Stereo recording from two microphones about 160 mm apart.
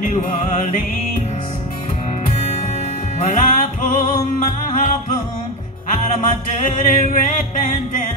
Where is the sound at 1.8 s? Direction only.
45° left (ahead or behind).